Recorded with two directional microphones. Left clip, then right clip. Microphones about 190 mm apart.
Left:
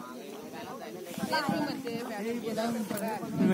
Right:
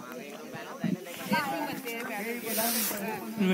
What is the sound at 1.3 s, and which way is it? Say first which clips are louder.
Speech: even; 60° left (ahead or behind).